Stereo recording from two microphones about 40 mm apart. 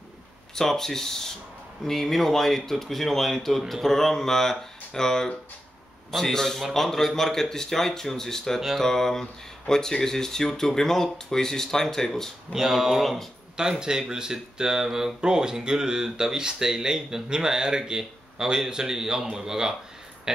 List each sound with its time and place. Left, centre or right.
0.6 s a man's voice: centre
7.2 s speech: centre
12.5 s speech: centre
13.6 s speech: centre